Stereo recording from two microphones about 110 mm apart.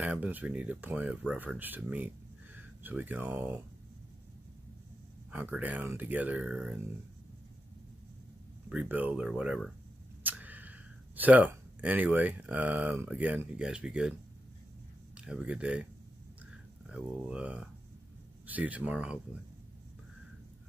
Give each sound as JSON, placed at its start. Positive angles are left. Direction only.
{"t": 0.0, "sound": "speech", "side_deg": -15}
{"t": 5.3, "sound": "speech", "side_deg": -15}
{"t": 8.6, "sound": "speech", "side_deg": -15}
{"t": 10.2, "sound": "a sound", "side_deg": -15}
{"t": 13.1, "sound": "speech", "side_deg": -15}
{"t": 15.1, "sound": "speech", "side_deg": -10}
{"t": 16.9, "sound": "speech", "side_deg": -10}